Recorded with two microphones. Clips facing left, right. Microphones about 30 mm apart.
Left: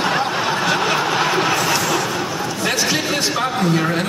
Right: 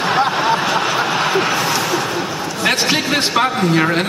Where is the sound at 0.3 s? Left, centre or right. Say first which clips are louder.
Right 3 dB; centre.